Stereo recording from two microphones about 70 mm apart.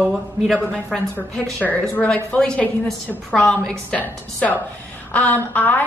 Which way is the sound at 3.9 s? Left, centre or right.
Left.